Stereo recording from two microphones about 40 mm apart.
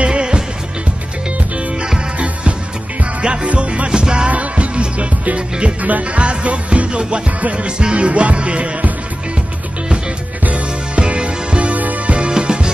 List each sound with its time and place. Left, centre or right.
0.0 s music: right
2.1 s music: right
4.3 s music: right
10.4 s music: right
12.2 s music: right